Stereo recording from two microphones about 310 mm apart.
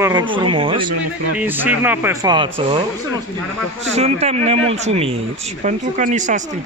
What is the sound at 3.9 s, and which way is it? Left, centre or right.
Speech, right.